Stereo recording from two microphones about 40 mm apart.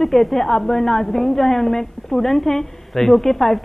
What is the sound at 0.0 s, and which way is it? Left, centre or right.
A woman's voice, centre.